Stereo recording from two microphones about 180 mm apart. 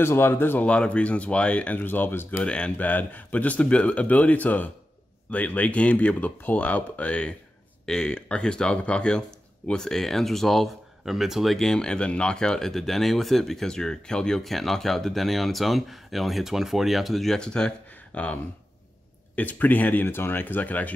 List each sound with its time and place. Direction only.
0.0 s speech: 15° left (ahead or behind)